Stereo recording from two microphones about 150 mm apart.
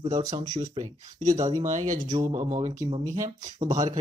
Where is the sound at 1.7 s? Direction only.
55° right (ahead or behind).